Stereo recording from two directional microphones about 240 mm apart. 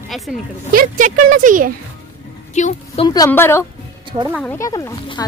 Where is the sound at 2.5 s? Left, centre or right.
Left.